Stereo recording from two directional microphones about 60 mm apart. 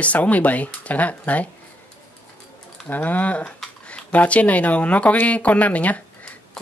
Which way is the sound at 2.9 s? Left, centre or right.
Left.